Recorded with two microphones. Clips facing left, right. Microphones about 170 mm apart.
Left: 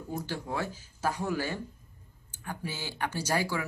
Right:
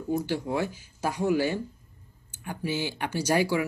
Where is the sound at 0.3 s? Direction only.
15° right (ahead or behind).